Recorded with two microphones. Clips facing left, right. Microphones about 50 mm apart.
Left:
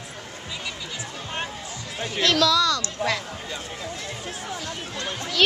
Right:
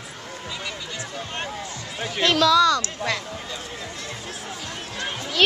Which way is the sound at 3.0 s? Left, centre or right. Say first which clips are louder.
Left 1 dB; centre.